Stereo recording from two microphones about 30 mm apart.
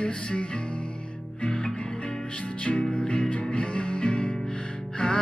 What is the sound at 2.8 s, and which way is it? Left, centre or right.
Music, left.